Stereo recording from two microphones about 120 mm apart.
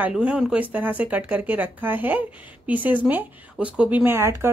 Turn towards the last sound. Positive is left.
turn(degrees=-20)  # may be behind; listen again after turning